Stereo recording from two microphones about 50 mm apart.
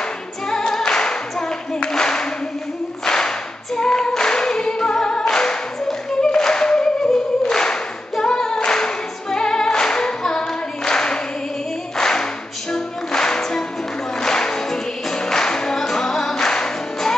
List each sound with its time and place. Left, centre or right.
0.5 s singing: centre
12.7 s music: centre